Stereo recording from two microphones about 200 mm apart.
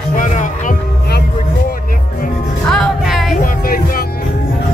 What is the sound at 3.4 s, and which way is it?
Music, 45° left (ahead or behind).